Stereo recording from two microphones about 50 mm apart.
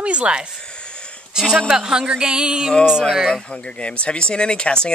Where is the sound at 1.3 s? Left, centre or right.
Centre.